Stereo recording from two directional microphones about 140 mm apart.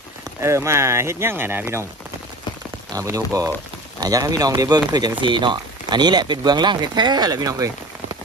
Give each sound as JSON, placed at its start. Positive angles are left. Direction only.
{"t": 0.2, "sound": "speech", "side_deg": -20}
{"t": 2.9, "sound": "speech", "side_deg": -25}